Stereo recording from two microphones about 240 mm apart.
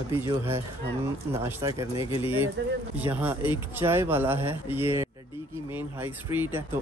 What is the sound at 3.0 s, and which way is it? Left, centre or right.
Speech, centre.